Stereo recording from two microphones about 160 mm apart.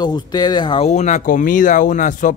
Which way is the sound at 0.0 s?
25° left (ahead or behind).